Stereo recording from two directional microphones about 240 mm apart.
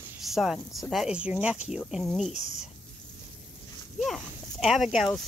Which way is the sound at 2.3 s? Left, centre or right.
Left.